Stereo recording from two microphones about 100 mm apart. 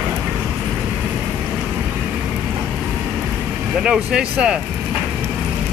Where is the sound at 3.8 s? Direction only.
10° right (ahead or behind).